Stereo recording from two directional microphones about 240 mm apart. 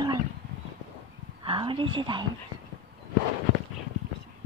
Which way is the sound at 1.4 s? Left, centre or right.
Right.